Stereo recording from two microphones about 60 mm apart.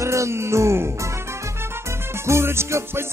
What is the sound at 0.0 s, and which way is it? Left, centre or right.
Music, right.